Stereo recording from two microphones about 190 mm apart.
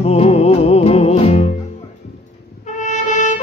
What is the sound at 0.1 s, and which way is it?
Music, 35° left (ahead or behind).